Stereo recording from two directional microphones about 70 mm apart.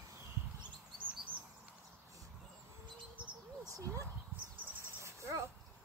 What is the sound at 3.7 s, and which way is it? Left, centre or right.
Dog, right.